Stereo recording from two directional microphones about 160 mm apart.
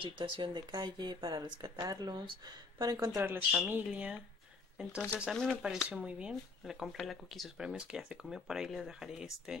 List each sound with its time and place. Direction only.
0.2 s speech: 30° right (ahead or behind); by 4.2 s 5° right (ahead or behind)
5.2 s speech: 5° left (ahead or behind)